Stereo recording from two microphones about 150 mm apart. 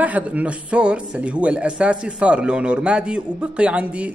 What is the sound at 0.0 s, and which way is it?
Speech, 10° right (ahead or behind).